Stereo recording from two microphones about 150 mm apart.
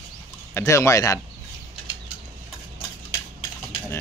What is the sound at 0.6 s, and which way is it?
Speech, 20° left (ahead or behind).